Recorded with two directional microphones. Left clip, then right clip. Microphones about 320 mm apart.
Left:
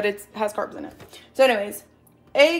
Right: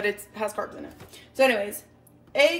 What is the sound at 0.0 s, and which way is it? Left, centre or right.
Speech, left.